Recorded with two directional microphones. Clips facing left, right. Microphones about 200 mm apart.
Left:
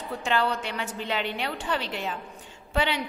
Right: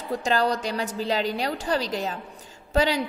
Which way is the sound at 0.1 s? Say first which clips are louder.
Right 3 dB; 40° right (ahead or behind).